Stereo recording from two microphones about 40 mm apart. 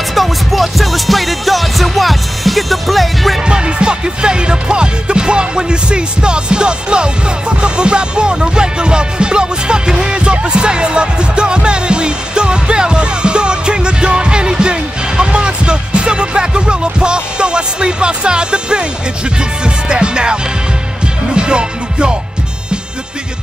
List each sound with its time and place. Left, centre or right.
0.1 s music: centre
3.4 s music: right